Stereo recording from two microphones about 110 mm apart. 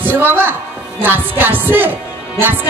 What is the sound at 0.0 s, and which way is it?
A woman's voice, 20° right (ahead or behind).